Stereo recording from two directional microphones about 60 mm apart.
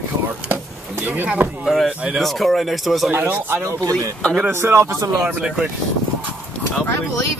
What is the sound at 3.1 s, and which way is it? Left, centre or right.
Speech, right.